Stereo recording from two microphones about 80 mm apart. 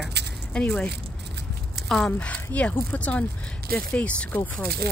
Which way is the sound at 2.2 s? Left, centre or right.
Centre.